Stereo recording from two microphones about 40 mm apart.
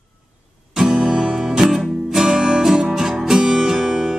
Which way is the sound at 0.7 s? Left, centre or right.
Centre.